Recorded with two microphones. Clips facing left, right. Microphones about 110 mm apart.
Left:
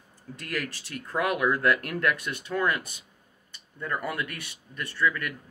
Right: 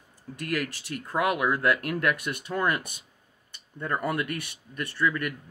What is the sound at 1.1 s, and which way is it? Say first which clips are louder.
Speech: even; 10° right (ahead or behind).